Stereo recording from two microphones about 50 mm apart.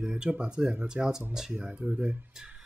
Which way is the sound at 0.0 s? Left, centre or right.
Right.